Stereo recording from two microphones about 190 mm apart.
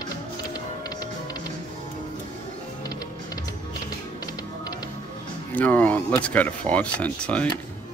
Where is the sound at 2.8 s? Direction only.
20° left (ahead or behind).